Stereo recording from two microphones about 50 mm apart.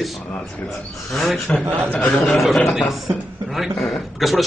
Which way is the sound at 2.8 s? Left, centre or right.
Centre.